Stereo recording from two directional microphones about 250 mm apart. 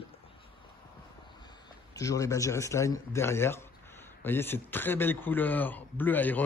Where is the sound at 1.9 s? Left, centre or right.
Centre.